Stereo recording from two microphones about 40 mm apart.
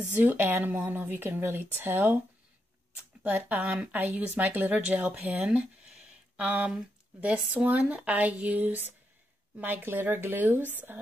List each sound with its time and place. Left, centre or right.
0.1 s a woman's voice: right
3.3 s a woman's voice: right
5.9 s a sound: right
7.7 s speech: right